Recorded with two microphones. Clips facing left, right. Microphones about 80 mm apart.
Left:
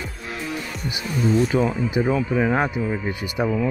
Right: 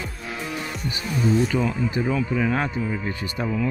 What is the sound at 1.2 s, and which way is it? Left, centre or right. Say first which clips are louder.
Speech: left 1 dB; centre.